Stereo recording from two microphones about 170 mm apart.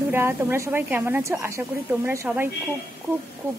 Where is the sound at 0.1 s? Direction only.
15° right (ahead or behind).